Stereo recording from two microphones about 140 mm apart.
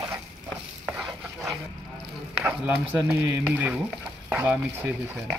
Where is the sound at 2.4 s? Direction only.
10° right (ahead or behind).